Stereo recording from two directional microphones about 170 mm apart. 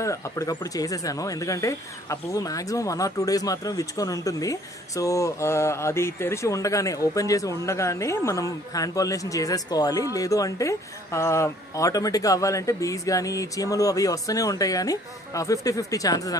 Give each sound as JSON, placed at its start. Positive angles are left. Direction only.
{"t": 0.0, "sound": "speech", "side_deg": 20}